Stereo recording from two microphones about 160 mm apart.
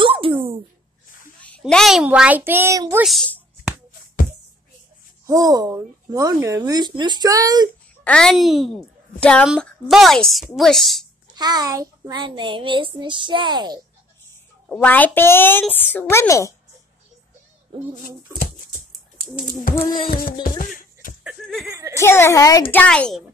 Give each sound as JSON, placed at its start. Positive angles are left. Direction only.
{"t": 0.0, "sound": "dog", "side_deg": -35}
{"t": 1.6, "sound": "a child's voice", "side_deg": 0}
{"t": 3.0, "sound": "a woman's voice", "side_deg": 0}
{"t": 5.2, "sound": "a woman's voice", "side_deg": -20}
{"t": 8.0, "sound": "a woman's voice", "side_deg": 5}
{"t": 11.3, "sound": "a woman's voice", "side_deg": -25}
{"t": 14.7, "sound": "a child's voice", "side_deg": 10}
{"t": 18.9, "sound": "bird", "side_deg": 0}
{"t": 19.8, "sound": "child singing", "side_deg": 60}
{"t": 20.4, "sound": "music", "side_deg": 55}
{"t": 21.6, "sound": "a sound", "side_deg": -20}
{"t": 21.9, "sound": "a child's voice", "side_deg": 15}